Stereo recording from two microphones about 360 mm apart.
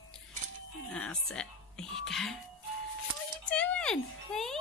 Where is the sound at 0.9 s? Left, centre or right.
Centre.